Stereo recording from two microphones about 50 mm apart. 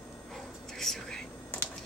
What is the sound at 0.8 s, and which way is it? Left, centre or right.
Whispering, centre.